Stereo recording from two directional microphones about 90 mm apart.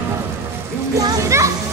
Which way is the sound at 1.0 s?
40° right (ahead or behind).